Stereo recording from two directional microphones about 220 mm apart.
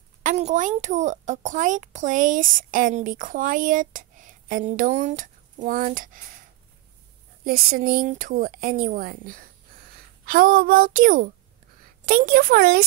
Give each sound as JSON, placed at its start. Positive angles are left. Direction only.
{"t": 0.2, "sound": "a woman's voice", "side_deg": -30}
{"t": 7.4, "sound": "a woman's voice", "side_deg": -45}